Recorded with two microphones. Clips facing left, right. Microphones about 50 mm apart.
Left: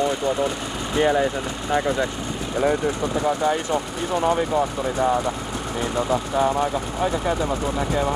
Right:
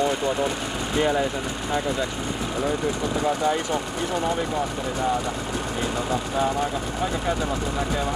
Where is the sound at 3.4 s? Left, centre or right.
Left.